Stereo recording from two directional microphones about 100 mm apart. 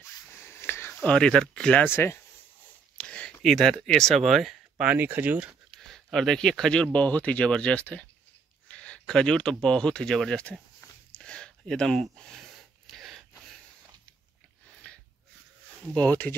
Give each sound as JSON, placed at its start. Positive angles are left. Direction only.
{"t": 0.0, "sound": "a sound", "side_deg": 25}
{"t": 1.0, "sound": "speech", "side_deg": 10}
{"t": 1.9, "sound": "speech", "side_deg": 25}
{"t": 3.0, "sound": "a sound", "side_deg": 10}
{"t": 3.4, "sound": "speech", "side_deg": 0}
{"t": 4.8, "sound": "speech", "side_deg": -20}
{"t": 5.8, "sound": "speech", "side_deg": 5}
{"t": 8.6, "sound": "a sound", "side_deg": 10}
{"t": 15.9, "sound": "speech", "side_deg": 15}